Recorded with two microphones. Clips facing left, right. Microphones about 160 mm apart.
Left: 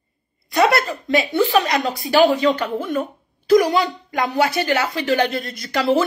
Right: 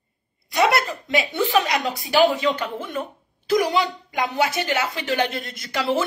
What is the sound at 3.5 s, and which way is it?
Speech, 45° left (ahead or behind).